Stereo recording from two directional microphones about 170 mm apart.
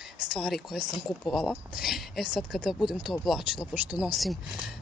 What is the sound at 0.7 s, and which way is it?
Speech, 25° left (ahead or behind).